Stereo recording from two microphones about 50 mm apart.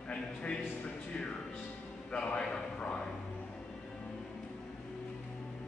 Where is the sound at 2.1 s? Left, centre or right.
Centre.